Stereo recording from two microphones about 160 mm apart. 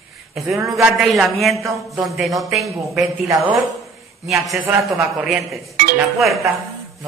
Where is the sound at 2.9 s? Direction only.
20° right (ahead or behind).